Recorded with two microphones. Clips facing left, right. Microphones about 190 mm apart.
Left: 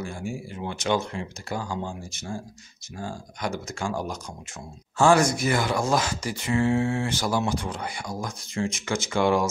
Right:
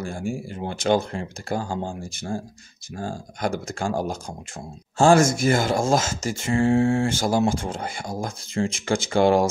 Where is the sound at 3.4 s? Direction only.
55° right (ahead or behind).